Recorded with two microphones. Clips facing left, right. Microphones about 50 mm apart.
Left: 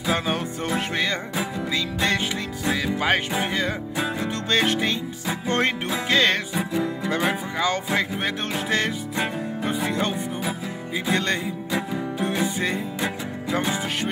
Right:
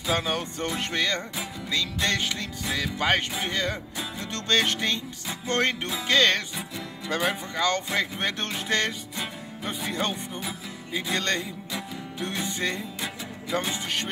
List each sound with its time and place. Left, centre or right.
0.1 s music: centre
4.2 s music: centre
6.5 s music: left
7.2 s music: centre